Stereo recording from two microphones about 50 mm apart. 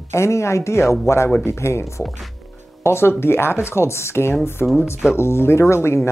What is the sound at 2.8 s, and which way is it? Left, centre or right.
Speech, left.